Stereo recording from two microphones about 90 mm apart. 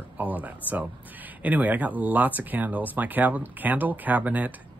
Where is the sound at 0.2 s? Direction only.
15° right (ahead or behind).